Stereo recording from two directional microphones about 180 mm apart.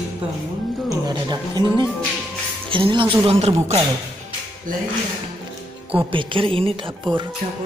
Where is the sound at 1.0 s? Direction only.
25° right (ahead or behind).